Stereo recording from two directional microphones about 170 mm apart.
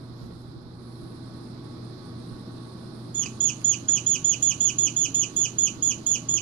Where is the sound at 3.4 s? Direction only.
5° left (ahead or behind).